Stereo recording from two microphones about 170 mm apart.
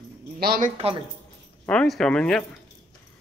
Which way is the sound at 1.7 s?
5° left (ahead or behind).